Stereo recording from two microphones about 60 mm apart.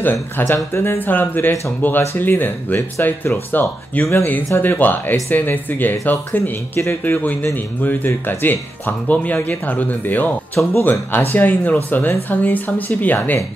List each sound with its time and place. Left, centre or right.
0.0 s speech: left
4.0 s speech: left
4.6 s speech: left